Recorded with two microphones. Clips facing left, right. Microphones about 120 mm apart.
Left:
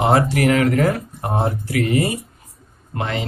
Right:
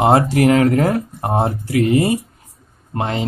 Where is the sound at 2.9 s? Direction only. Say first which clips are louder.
Right 3 dB; 35° right (ahead or behind).